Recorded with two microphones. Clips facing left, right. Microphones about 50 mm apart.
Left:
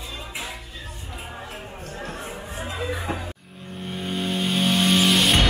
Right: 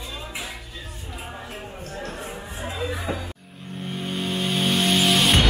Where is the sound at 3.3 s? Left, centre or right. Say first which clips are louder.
Even; centre.